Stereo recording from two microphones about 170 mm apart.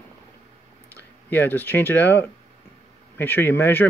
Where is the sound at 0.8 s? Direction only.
10° left (ahead or behind).